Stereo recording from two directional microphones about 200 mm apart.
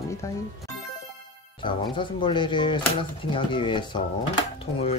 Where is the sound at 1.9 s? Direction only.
25° left (ahead or behind).